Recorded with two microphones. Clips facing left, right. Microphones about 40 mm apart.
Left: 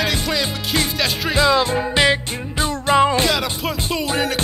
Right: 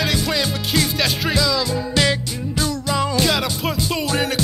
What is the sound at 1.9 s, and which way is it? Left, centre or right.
Music, left.